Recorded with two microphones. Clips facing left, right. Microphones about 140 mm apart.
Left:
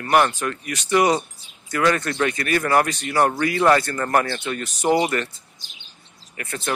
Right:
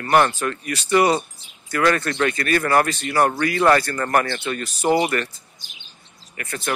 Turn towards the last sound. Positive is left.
turn(degrees=20)  # may be behind; listen again after turning